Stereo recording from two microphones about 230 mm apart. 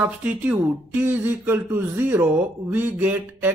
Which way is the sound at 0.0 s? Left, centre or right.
Centre.